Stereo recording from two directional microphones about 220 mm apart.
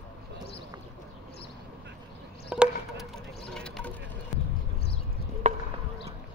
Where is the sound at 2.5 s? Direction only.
5° right (ahead or behind).